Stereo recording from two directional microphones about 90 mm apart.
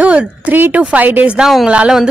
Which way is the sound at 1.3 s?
5° right (ahead or behind).